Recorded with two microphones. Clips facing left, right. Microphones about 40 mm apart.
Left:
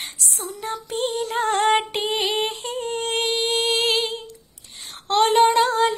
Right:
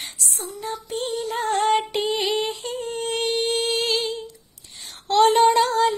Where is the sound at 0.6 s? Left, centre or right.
Left.